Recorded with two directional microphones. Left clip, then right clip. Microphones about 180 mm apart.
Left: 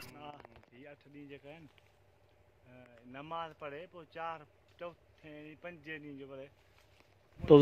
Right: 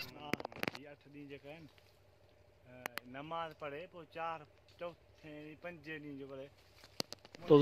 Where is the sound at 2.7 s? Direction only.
50° left (ahead or behind); by 6.4 s 30° left (ahead or behind).